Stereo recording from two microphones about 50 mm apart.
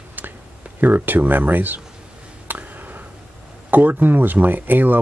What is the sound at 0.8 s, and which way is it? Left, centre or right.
Speech, right.